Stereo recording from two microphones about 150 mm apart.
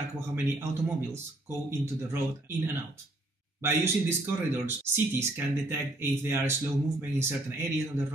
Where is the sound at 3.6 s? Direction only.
15° right (ahead or behind).